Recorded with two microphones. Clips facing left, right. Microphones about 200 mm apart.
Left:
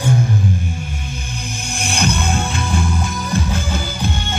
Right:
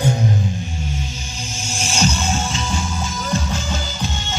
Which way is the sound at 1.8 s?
60° left (ahead or behind).